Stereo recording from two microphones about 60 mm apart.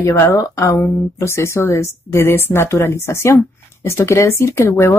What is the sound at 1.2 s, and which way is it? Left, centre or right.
Speech, left.